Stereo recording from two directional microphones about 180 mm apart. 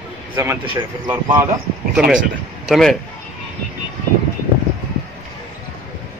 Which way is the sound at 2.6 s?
Centre (ahead or behind).